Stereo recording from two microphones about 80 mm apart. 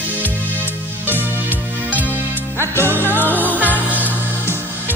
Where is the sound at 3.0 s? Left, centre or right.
Left.